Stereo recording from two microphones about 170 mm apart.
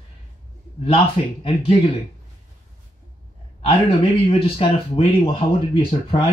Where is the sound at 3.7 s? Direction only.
30° left (ahead or behind).